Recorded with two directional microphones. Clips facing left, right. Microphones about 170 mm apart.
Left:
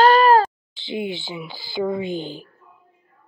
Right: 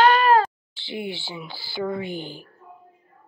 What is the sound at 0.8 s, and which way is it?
Speech, 20° left (ahead or behind).